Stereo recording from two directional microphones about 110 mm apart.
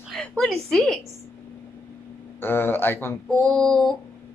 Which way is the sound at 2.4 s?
20° left (ahead or behind).